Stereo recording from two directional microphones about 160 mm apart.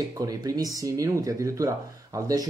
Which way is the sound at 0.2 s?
20° right (ahead or behind).